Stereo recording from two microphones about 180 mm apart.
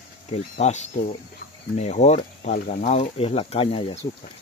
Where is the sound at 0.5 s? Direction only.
40° left (ahead or behind).